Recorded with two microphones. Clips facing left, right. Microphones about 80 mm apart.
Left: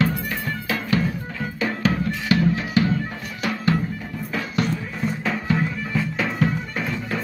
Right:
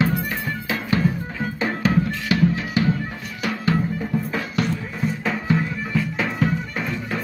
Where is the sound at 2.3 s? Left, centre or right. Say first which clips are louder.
Even; centre.